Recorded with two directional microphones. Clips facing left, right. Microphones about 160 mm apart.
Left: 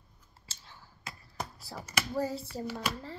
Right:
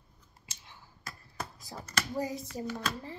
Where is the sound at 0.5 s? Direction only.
15° right (ahead or behind).